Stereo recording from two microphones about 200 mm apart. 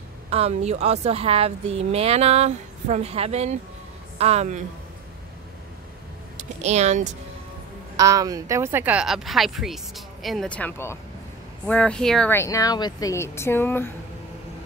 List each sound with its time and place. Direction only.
0.3 s speech: 30° right (ahead or behind)
6.3 s speech: 35° right (ahead or behind)
7.9 s speech: 15° right (ahead or behind); by 13.9 s 10° left (ahead or behind)